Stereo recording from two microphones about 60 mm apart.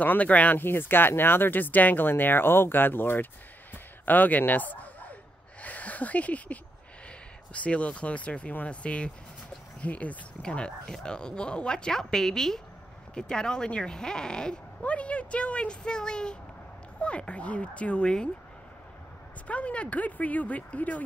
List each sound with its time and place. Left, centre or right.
0.0 s speech: left
3.7 s a sound: left
5.6 s speech: left
19.4 s speech: left